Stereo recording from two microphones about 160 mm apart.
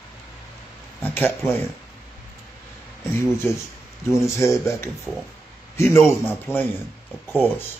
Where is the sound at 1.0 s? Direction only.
15° left (ahead or behind).